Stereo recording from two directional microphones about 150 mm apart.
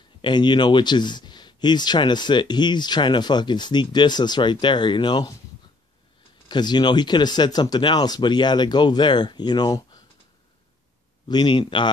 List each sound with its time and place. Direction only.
0.2 s speech: 30° left (ahead or behind)
6.5 s speech: 30° left (ahead or behind)
11.2 s speech: 30° left (ahead or behind)